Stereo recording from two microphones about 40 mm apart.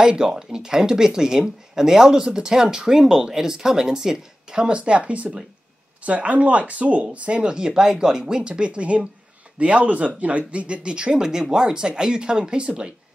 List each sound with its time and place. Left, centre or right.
0.0 s speech: centre